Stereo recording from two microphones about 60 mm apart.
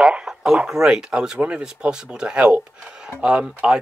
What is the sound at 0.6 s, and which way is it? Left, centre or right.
Speech, centre.